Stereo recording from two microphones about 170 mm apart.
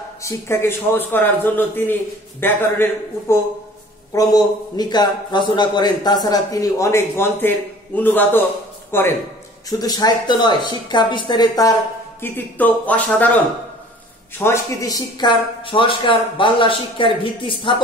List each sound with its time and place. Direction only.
0.2 s a man's voice: 15° left (ahead or behind)
12.2 s a man's voice: 10° left (ahead or behind)
14.4 s a man's voice: 15° left (ahead or behind)